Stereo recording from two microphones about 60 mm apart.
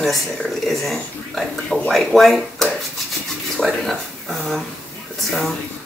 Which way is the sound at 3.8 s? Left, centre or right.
Centre.